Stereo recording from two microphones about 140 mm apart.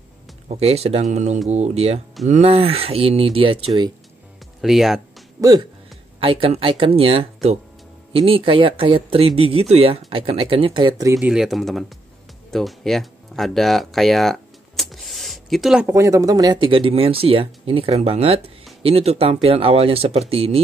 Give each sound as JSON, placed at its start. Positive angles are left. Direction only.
{"t": 0.5, "sound": "speech", "side_deg": -45}
{"t": 4.6, "sound": "speech", "side_deg": 0}
{"t": 6.1, "sound": "speech", "side_deg": -40}
{"t": 11.1, "sound": "speech", "side_deg": -5}
{"t": 15.9, "sound": "speech", "side_deg": -20}